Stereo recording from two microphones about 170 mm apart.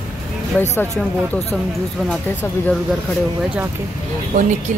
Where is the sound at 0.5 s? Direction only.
5° left (ahead or behind).